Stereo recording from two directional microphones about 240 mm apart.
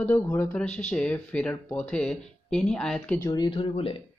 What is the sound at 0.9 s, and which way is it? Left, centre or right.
Speech, centre.